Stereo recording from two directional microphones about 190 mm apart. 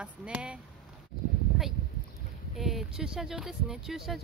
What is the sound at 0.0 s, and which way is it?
Speech, 5° right (ahead or behind).